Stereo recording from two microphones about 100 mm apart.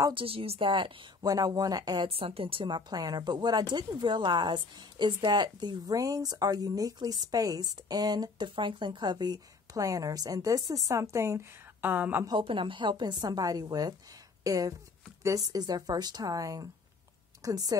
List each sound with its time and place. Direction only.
0.1 s a woman's voice: 65° right (ahead or behind)
1.2 s a woman's voice: 40° right (ahead or behind)
2.0 s a woman's voice: 70° right (ahead or behind); by 12.3 s 20° right (ahead or behind)
12.3 s a woman's voice: 55° right (ahead or behind); by 17.7 s 35° right (ahead or behind)